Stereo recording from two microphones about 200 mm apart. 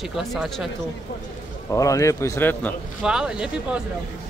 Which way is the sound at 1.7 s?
15° left (ahead or behind).